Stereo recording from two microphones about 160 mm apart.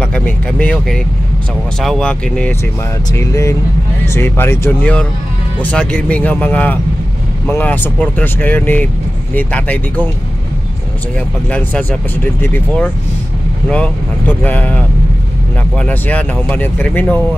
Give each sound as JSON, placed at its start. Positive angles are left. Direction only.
{"t": 0.0, "sound": "speech", "side_deg": 5}
{"t": 3.1, "sound": "speech", "side_deg": 20}
{"t": 11.5, "sound": "speech", "side_deg": 10}